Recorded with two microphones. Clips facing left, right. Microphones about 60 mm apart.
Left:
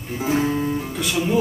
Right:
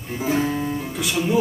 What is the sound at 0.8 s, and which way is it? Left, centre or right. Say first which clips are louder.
Speech: even; centre.